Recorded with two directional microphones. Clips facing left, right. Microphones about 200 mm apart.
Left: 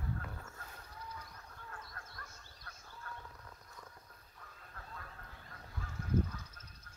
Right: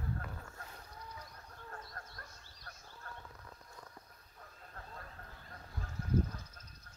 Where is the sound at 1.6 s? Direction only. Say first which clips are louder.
Right 3 dB; 35° right (ahead or behind).